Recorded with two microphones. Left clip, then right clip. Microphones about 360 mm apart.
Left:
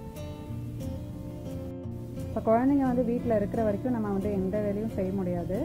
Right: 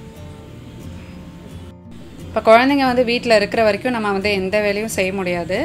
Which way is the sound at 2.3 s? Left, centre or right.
Centre.